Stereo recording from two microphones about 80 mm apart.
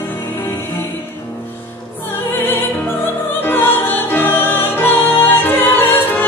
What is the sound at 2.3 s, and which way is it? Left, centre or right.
Music, left.